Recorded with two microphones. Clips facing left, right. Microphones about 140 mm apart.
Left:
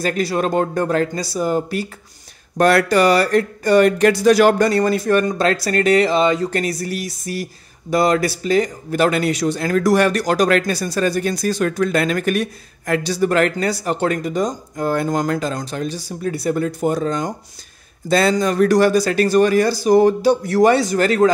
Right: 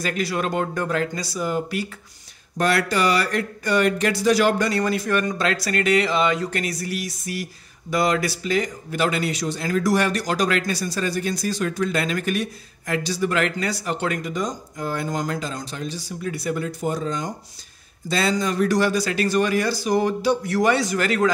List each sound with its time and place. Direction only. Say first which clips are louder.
0.0 s speech: left 5 dB; 35° left (ahead or behind)
2.5 s speech: left 7 dB; 50° left (ahead or behind)
16.1 s speech: left 5 dB; 40° left (ahead or behind)